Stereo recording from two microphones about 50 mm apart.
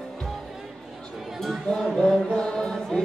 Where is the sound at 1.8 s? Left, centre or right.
Centre.